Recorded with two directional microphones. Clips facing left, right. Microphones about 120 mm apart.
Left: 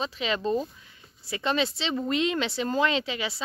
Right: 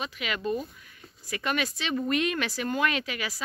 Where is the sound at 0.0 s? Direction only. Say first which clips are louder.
Left 4 dB; 30° left (ahead or behind).